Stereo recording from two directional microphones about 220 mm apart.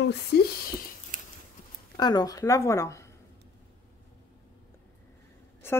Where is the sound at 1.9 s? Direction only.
20° left (ahead or behind).